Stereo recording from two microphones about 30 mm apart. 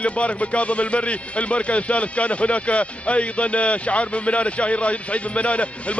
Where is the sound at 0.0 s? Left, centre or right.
Left.